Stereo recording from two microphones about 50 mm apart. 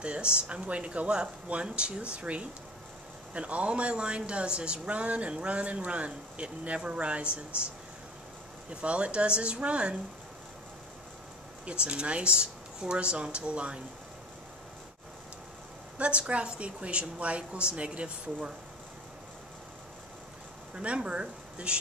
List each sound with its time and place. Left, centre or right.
0.0 s speech: right
8.6 s speech: right
11.6 s speech: right
16.0 s speech: right
20.7 s speech: right